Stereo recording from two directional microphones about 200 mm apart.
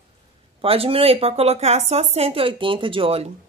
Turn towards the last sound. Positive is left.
turn(degrees=-25)  # may be behind; listen again after turning